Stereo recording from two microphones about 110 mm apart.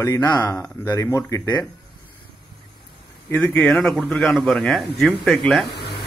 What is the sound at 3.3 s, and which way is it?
Speech, 15° left (ahead or behind).